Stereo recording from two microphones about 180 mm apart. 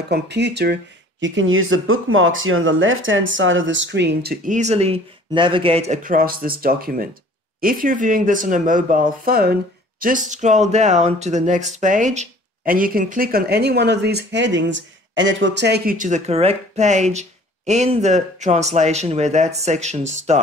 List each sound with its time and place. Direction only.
0.1 s speech: 70° right (ahead or behind)
1.2 s speech: 90° right; by 4.6 s 60° right (ahead or behind)
4.6 s speech: 35° right (ahead or behind)
6.0 s speech: 50° right (ahead or behind)